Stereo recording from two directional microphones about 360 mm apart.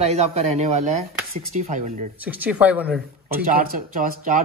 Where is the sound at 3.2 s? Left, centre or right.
Right.